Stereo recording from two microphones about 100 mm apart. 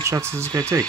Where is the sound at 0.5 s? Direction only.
35° right (ahead or behind).